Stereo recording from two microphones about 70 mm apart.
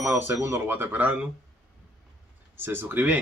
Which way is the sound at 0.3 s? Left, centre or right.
Right.